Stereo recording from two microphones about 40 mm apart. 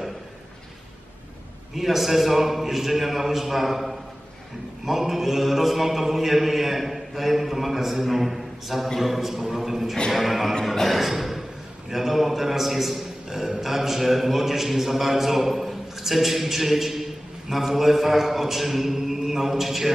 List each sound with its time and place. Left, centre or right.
1.8 s a man's voice: centre
10.6 s a sound: centre
11.9 s a man's voice: centre